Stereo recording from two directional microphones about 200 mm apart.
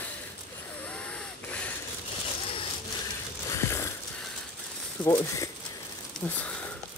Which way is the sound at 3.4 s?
15° left (ahead or behind).